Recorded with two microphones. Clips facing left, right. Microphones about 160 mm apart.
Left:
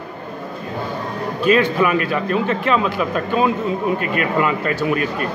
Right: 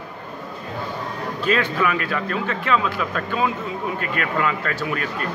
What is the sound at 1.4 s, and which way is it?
Speech, 15° left (ahead or behind).